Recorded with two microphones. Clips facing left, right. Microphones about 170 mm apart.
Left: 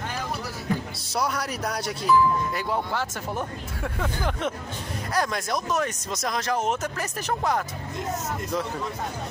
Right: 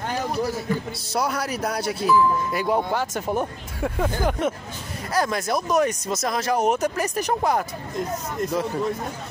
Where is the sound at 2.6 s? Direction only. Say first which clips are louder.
Right 5 dB; 15° right (ahead or behind).